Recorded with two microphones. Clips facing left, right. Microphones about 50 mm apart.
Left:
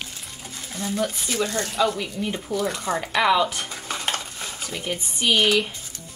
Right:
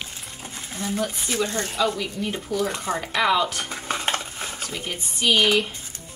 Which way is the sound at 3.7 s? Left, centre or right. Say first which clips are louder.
Right 2 dB; centre.